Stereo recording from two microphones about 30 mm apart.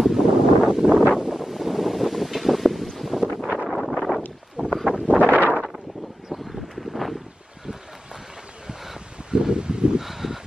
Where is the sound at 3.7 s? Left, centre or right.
Centre.